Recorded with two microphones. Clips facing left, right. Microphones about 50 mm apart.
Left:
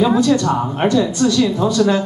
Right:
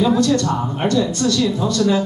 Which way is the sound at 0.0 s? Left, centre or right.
Centre.